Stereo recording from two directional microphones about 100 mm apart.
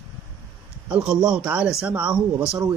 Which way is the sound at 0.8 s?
10° right (ahead or behind).